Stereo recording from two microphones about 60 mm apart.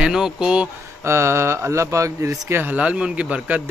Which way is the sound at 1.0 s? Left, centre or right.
Right.